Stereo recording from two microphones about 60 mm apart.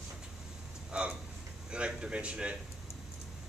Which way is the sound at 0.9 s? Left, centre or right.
Centre.